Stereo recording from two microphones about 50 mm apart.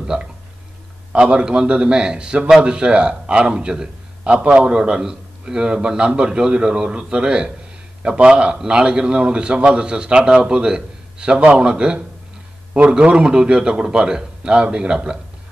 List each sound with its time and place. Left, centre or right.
0.0 s a sound: centre
1.1 s a man's voice: centre
4.2 s a man's voice: right